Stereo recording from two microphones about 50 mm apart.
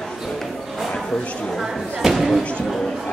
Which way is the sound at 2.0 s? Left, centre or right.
Centre.